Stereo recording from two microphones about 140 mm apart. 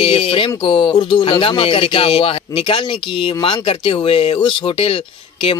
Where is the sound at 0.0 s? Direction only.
45° left (ahead or behind).